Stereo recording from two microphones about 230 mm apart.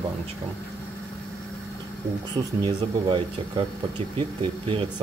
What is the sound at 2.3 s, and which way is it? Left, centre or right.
Speech, right.